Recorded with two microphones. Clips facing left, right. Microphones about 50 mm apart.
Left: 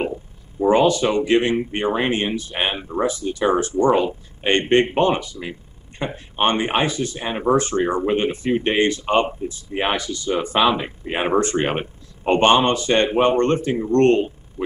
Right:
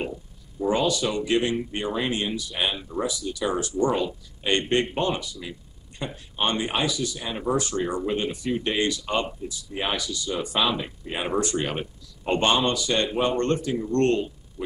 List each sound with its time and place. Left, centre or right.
0.0 s speech: left